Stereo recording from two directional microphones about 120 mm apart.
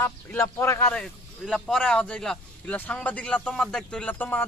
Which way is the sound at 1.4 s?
Centre (ahead or behind).